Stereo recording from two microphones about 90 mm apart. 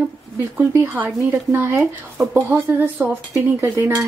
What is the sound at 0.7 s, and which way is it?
Speech, 30° right (ahead or behind).